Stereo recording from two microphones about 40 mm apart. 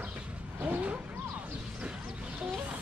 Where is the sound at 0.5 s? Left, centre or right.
Right.